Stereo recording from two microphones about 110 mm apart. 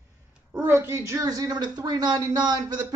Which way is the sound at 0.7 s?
25° right (ahead or behind).